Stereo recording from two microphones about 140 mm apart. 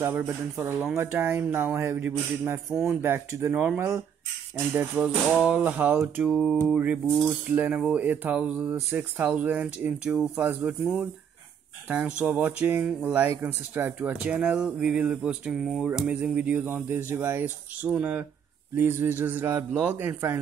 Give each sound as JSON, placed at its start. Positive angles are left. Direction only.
{"t": 0.0, "sound": "cutlery", "side_deg": -15}
{"t": 2.7, "sound": "speech", "side_deg": -5}
{"t": 3.0, "sound": "cutlery", "side_deg": -15}
{"t": 12.2, "sound": "cutlery", "side_deg": -10}